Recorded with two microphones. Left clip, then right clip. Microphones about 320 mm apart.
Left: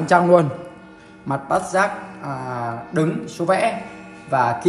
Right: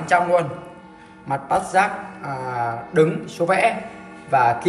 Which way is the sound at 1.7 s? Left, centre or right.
Centre.